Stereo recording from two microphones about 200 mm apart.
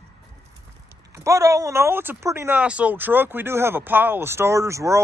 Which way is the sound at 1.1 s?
15° right (ahead or behind).